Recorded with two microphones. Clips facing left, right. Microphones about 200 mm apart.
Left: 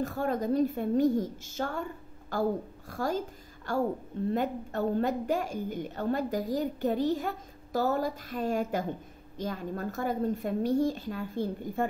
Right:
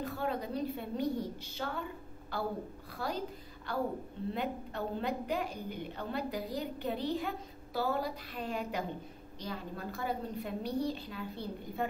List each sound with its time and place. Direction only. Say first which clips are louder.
0.0 s a woman's voice: left 6 dB; 45° left (ahead or behind)